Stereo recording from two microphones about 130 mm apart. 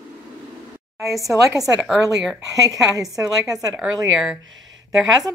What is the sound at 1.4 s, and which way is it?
Speech, 25° right (ahead or behind).